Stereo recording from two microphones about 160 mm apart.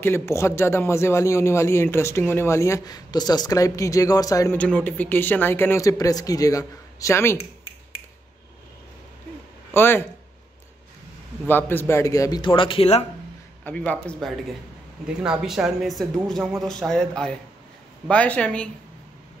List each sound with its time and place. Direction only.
0.0 s a man's voice: 15° left (ahead or behind)
4.6 s a man's voice: 10° left (ahead or behind)
9.7 s speech: 15° left (ahead or behind)
11.4 s speech: 15° left (ahead or behind); by 13.0 s 35° left (ahead or behind)
13.7 s a man's voice: 10° left (ahead or behind)
15.0 s a man's voice: 5° right (ahead or behind)